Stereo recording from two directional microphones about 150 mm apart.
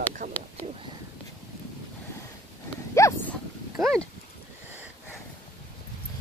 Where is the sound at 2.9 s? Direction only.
20° left (ahead or behind).